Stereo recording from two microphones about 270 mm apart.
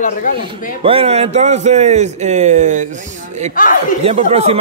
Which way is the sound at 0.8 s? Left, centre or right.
Right.